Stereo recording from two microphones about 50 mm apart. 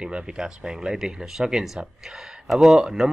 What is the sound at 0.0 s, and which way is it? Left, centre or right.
Speech, centre.